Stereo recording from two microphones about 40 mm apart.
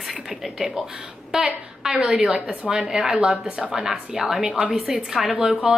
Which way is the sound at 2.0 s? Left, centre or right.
Centre.